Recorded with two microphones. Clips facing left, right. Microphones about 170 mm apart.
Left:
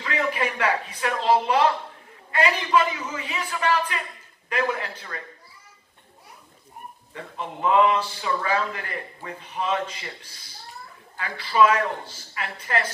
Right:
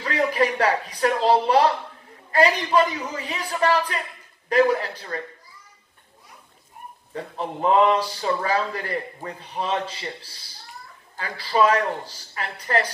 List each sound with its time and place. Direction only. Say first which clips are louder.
0.0 s a man's voice: right 4 dB; 35° right (ahead or behind)
7.2 s a man's voice: right 4 dB; 35° right (ahead or behind)